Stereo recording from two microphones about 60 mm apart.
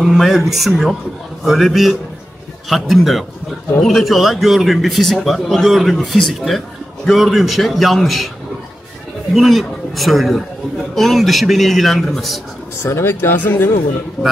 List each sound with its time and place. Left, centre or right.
0.0 s speech: centre
9.3 s speech: centre
12.8 s speech: left